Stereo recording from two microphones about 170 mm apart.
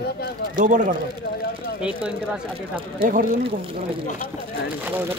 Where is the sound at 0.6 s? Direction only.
50° right (ahead or behind).